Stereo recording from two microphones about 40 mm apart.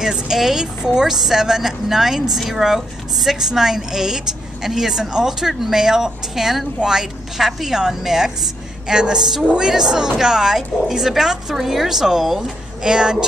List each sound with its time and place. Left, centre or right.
0.0 s speech: centre
12.8 s speech: centre